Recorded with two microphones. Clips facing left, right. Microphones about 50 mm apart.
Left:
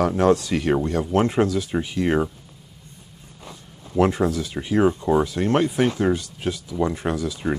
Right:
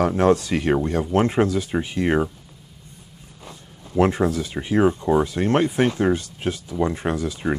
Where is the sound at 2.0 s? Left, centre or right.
Centre.